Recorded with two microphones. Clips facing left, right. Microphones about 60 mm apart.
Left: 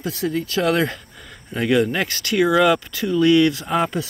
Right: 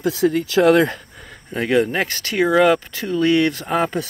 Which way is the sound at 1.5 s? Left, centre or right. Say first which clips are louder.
Right 1 dB; right.